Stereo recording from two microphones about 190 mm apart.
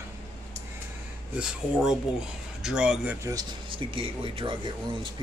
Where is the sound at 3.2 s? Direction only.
25° right (ahead or behind).